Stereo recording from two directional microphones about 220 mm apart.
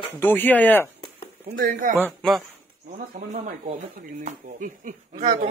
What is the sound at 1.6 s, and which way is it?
Speech, 40° right (ahead or behind).